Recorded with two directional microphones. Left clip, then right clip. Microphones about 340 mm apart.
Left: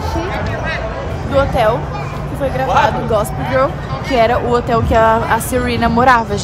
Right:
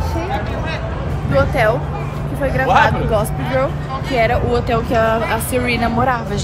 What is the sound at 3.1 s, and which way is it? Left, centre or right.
A woman's voice, centre.